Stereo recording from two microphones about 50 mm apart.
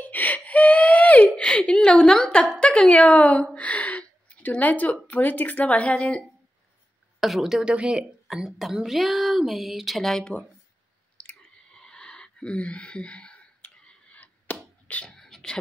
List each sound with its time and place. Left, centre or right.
0.0 s gasp: left
1.3 s a woman's voice: centre
3.5 s gasp: left
5.0 s speech: left
7.2 s a woman's voice: centre
7.7 s speech: right
8.5 s speech: centre
11.7 s wheeze: centre
14.5 s chop: left
15.0 s a sound: centre